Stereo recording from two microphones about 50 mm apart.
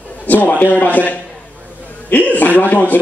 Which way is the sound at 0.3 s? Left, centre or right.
Left.